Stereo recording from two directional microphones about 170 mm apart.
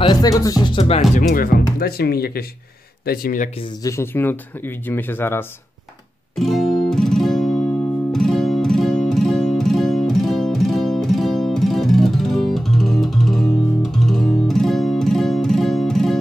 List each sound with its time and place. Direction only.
0.0 s speech: 25° left (ahead or behind)
1.1 s speech: 60° left (ahead or behind)
3.8 s speech: 15° left (ahead or behind)
6.3 s music: centre (ahead or behind)